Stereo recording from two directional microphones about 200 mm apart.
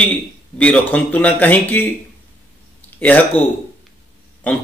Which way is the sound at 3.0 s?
10° left (ahead or behind).